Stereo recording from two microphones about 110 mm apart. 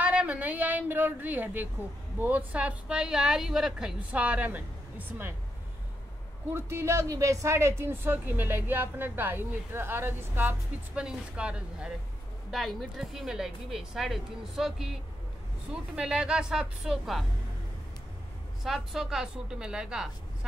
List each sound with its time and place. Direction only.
0.0 s a woman's voice: 10° right (ahead or behind)
6.5 s a woman's voice: 25° right (ahead or behind)
11.0 s a woman's voice: 10° right (ahead or behind)
16.0 s a woman's voice: 5° right (ahead or behind)
18.6 s speech: centre (ahead or behind)